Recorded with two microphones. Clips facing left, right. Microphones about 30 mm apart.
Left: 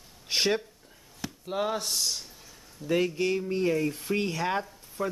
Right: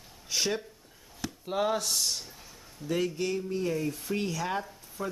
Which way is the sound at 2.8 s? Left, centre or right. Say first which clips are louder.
Left 3 dB; left.